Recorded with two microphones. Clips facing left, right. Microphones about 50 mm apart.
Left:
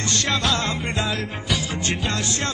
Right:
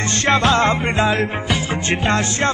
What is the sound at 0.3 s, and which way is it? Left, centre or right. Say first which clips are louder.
Music: right 10 dB; right.